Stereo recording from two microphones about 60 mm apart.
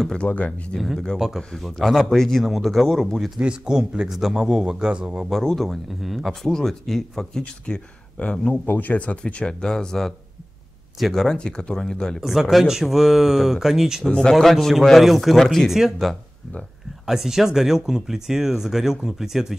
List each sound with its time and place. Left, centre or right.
0.0 s speech: centre
0.7 s speech: centre
3.3 s a man's voice: centre
5.3 s speech: centre
7.6 s speech: centre
8.6 s speech: left; by 11.3 s centre
11.3 s speech: centre
12.2 s speech: centre
14.0 s speech: centre